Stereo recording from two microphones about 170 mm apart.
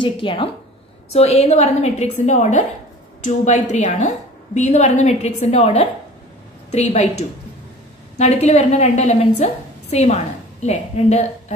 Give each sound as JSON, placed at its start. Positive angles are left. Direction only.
{"t": 0.0, "sound": "a woman's voice", "side_deg": 30}